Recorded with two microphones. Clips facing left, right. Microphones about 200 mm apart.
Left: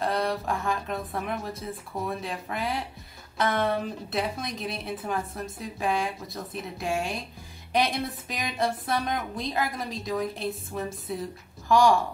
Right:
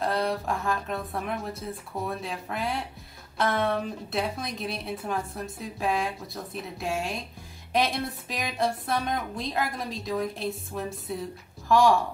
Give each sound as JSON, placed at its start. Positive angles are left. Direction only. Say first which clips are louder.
{"t": 0.0, "sound": "a woman's voice", "louder": "even", "side_deg": 0}